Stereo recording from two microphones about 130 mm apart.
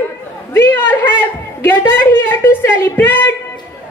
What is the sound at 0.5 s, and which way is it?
A woman's voice, 15° left (ahead or behind).